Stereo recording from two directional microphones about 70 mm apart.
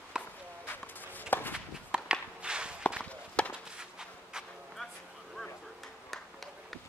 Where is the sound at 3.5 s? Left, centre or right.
Centre.